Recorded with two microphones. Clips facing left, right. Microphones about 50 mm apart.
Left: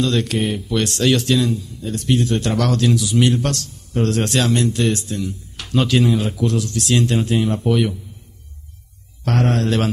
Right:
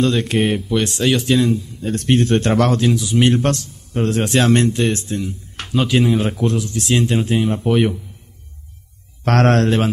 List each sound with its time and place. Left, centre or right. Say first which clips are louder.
0.4 s speech: right 4 dB; right
0.7 s speech: left 2 dB; centre
1.3 s a man's voice: right 2 dB; right
1.8 s speech: right 2 dB; right
2.8 s a man's voice: right 1 dB; right
3.5 s a man's voice: even; centre
4.4 s a man's voice: right 5 dB; right
5.7 s speech: even; centre
5.9 s a man's voice: right 2 dB; right
6.2 s speech: right 2 dB; right
6.5 s a man's voice: even; centre
7.7 s speech: right 4 dB; right
9.3 s a man's voice: right 5 dB; right